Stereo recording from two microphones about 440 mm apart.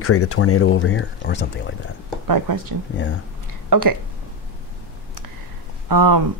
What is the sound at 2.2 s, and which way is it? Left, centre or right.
Speech, right.